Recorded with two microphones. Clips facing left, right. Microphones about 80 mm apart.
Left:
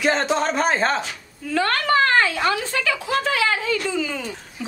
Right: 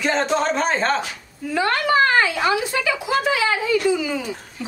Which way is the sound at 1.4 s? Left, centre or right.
Centre.